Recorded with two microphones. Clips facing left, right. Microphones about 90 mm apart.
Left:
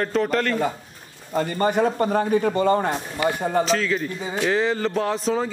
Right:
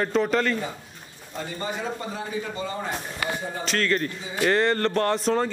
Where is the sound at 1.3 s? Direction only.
55° left (ahead or behind).